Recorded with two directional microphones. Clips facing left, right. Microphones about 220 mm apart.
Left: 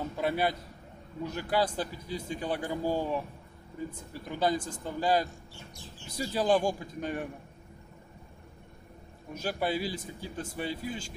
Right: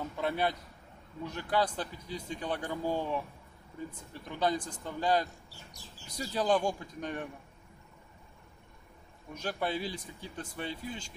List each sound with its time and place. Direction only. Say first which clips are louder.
0.2 s speech: left 2 dB; 5° left (ahead or behind)
5.5 s a sound: left 5 dB; 40° right (ahead or behind)
6.1 s speech: left 3 dB; 5° left (ahead or behind)
9.3 s speech: left 3 dB; 5° left (ahead or behind)